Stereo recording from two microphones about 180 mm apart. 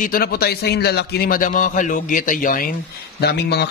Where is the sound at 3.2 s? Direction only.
65° left (ahead or behind).